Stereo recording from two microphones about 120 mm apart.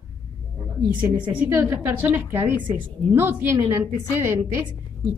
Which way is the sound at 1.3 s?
20° right (ahead or behind).